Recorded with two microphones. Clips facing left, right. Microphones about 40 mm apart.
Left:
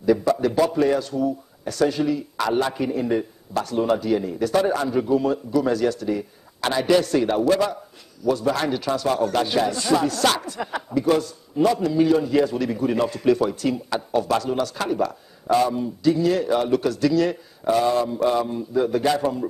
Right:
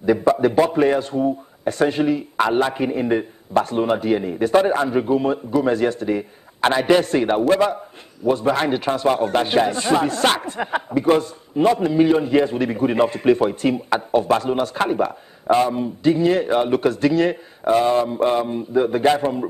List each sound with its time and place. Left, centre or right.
0.0 s a man's voice: right